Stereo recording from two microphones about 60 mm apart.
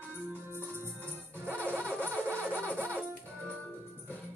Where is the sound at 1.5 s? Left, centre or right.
Left.